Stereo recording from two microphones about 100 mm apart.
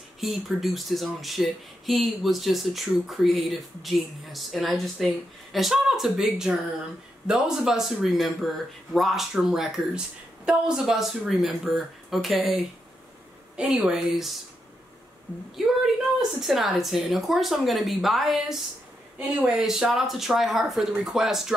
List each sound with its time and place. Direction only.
0.2 s speech: centre (ahead or behind)
15.6 s speech: centre (ahead or behind)